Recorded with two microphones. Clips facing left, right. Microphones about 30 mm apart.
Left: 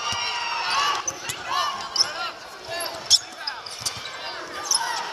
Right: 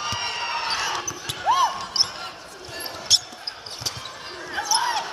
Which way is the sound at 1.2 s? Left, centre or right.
Right.